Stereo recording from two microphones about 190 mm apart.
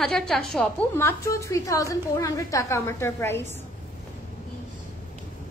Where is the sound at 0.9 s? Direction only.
15° left (ahead or behind).